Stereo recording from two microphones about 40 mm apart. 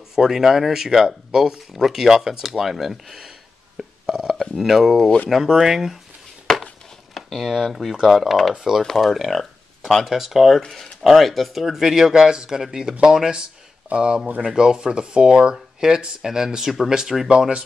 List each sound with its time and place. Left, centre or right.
0.1 s speech: centre
3.7 s a sound: centre
4.6 s speech: centre
7.2 s a sound: centre
7.4 s speech: centre
8.5 s speech: centre
8.8 s speech: centre
10.6 s speech: centre
12.1 s speech: right